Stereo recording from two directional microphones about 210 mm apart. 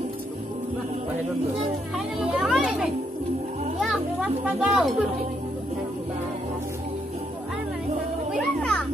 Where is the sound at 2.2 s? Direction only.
Centre (ahead or behind).